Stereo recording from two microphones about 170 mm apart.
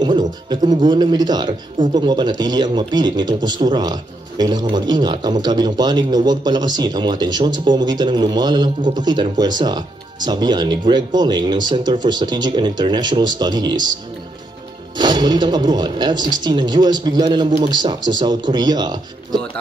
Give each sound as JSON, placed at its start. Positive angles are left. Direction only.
{"t": 0.0, "sound": "speech", "side_deg": -25}
{"t": 15.0, "sound": "speech", "side_deg": -25}